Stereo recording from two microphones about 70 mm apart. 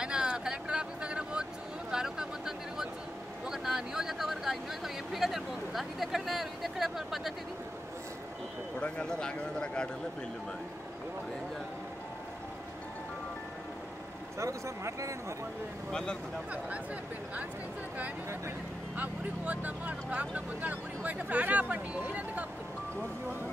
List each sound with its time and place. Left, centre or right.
0.0 s a sound: centre
3.4 s speech: centre
8.7 s speech: centre
14.4 s speech: right
15.9 s speech: centre
18.9 s speech: right